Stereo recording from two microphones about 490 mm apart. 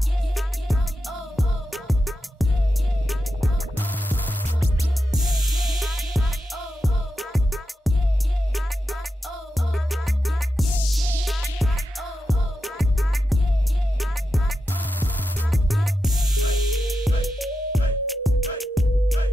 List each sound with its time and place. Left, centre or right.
0.4 s music: centre
9.7 s music: centre